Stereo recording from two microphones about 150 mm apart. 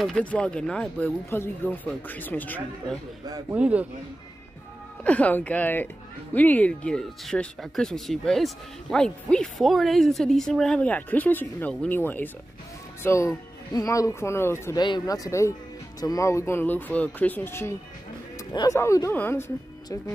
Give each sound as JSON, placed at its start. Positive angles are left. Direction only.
{"t": 0.0, "sound": "speech", "side_deg": 5}
{"t": 3.5, "sound": "a man's voice", "side_deg": -10}
{"t": 5.0, "sound": "speech", "side_deg": 10}
{"t": 14.8, "sound": "speech", "side_deg": 25}
{"t": 18.5, "sound": "speech", "side_deg": 30}